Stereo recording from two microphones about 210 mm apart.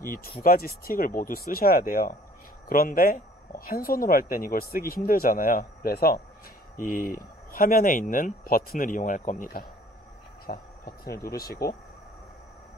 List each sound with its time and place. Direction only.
0.0 s speech: 45° left (ahead or behind)